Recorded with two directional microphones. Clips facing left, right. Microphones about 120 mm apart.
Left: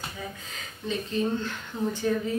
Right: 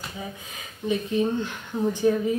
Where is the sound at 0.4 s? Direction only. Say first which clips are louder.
Right 4 dB; 15° right (ahead or behind).